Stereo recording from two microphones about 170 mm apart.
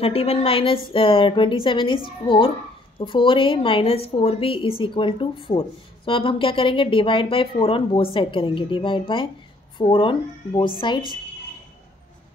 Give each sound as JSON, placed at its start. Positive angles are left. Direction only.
{"t": 0.0, "sound": "a woman's voice", "side_deg": 35}